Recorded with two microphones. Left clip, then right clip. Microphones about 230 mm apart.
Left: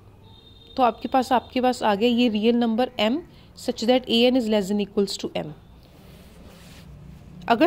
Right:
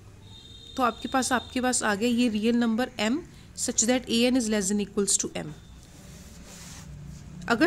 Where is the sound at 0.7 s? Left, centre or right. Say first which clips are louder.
Left 5 dB; centre.